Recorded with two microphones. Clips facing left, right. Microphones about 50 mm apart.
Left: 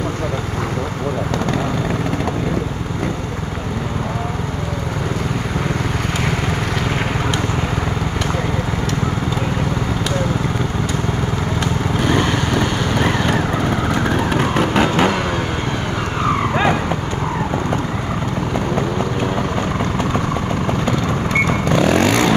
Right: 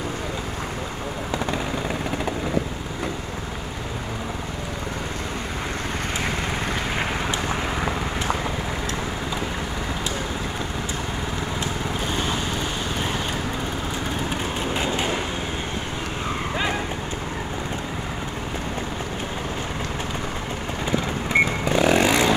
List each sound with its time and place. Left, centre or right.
12.0 s vehicle: left
21.6 s vehicle: centre